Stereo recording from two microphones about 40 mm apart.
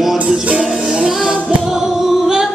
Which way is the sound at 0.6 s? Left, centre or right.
Centre.